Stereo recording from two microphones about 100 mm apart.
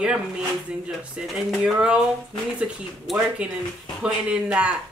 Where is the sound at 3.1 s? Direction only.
10° right (ahead or behind).